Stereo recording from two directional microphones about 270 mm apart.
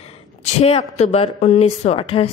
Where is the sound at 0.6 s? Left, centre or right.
Left.